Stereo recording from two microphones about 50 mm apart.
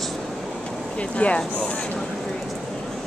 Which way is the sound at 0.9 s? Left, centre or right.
Left.